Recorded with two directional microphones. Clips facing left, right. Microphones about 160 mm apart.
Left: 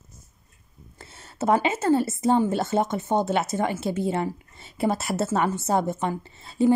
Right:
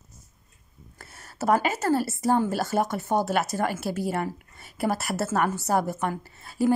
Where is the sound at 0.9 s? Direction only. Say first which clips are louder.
Left 2 dB; 25° left (ahead or behind).